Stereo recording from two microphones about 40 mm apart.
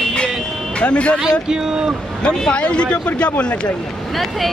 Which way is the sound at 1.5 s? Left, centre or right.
Centre.